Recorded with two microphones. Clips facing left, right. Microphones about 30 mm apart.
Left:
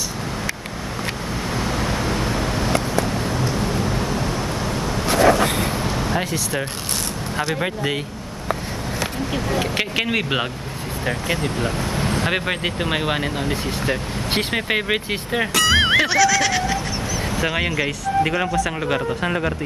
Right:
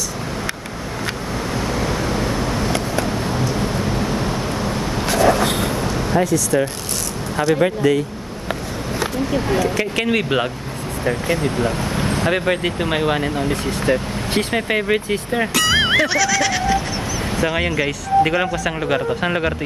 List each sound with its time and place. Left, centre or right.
1.6 s vehicle: centre
4.1 s a sound: right
5.0 s vehicle: right
9.9 s speech: centre
11.5 s speech: centre
12.3 s speech: centre
15.5 s music: centre
16.1 s speech: centre